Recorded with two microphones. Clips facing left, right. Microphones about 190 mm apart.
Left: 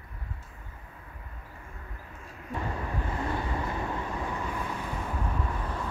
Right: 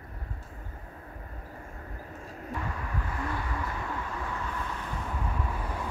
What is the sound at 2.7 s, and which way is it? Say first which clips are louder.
Vehicle: left 3 dB; 25° left (ahead or behind).